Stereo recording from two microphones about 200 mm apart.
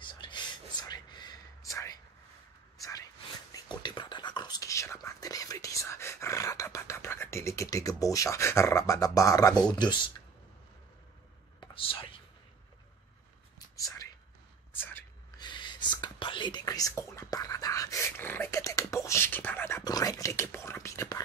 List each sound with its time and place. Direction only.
0.0 s whispering: 25° left (ahead or behind)
2.8 s a sound: 15° left (ahead or behind)
3.5 s whispering: 20° left (ahead or behind)
9.7 s speech: 20° left (ahead or behind)
11.6 s whispering: 25° left (ahead or behind)
14.7 s a sound: 10° left (ahead or behind)
15.3 s whispering: 20° left (ahead or behind)